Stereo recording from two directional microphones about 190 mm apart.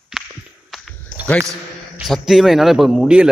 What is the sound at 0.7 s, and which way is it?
Walk, centre (ahead or behind).